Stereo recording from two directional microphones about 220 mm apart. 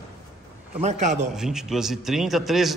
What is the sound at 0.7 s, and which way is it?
Speech, 30° right (ahead or behind).